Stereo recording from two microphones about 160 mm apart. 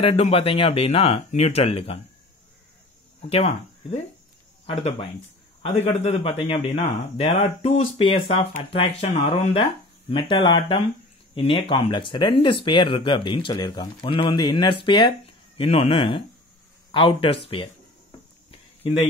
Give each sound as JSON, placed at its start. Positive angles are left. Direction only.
{"t": 0.0, "sound": "speech", "side_deg": 35}
{"t": 3.2, "sound": "speech", "side_deg": 40}
{"t": 5.6, "sound": "speech", "side_deg": 45}